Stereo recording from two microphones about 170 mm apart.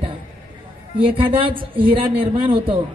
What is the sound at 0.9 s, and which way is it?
A woman's voice, 30° right (ahead or behind).